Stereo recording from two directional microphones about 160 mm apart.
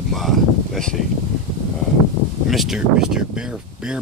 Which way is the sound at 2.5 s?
Centre (ahead or behind).